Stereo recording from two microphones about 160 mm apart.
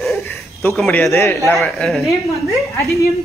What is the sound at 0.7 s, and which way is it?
Speech, 5° left (ahead or behind).